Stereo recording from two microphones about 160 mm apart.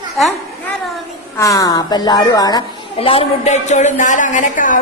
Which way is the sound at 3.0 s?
35° left (ahead or behind).